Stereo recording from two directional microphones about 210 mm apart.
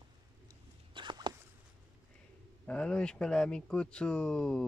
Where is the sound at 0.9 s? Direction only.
20° right (ahead or behind).